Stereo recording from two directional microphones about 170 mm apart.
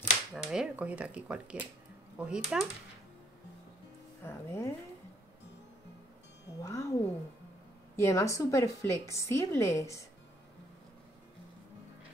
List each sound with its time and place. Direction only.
0.3 s speech: 5° right (ahead or behind)
4.2 s a woman's voice: 15° left (ahead or behind)
6.6 s a woman's voice: 20° left (ahead or behind)